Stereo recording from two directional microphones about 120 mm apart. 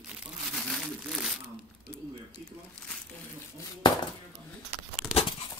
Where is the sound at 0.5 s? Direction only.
5° left (ahead or behind).